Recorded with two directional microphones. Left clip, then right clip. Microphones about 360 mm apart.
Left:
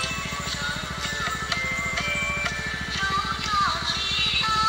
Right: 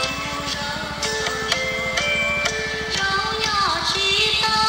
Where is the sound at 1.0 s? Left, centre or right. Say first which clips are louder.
Right 6 dB; right.